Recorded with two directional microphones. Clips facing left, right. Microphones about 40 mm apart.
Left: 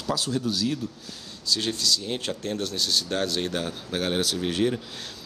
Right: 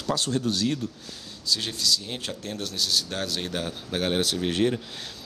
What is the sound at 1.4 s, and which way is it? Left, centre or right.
Speech, centre.